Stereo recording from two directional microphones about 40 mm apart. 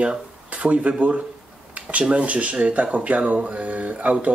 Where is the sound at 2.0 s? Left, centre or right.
Right.